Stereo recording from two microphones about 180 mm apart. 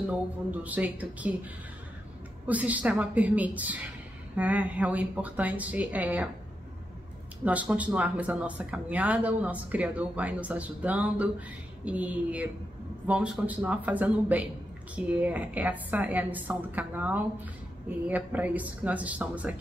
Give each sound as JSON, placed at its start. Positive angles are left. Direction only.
{"t": 0.7, "sound": "speech", "side_deg": -10}
{"t": 2.4, "sound": "speech", "side_deg": -10}
{"t": 7.4, "sound": "speech", "side_deg": -10}